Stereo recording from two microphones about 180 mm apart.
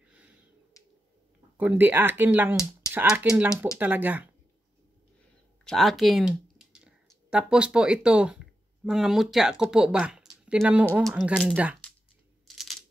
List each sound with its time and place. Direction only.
0.8 s finger snapping: 20° left (ahead or behind)
1.6 s speech: 10° right (ahead or behind)
5.7 s speech: centre (ahead or behind)
12.4 s coin: centre (ahead or behind)